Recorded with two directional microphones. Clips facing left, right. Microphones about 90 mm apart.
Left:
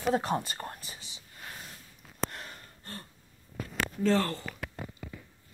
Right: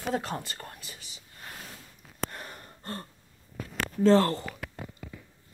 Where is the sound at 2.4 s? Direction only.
50° right (ahead or behind).